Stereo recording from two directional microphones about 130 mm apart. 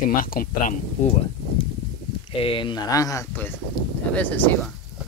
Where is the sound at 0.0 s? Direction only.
90° left.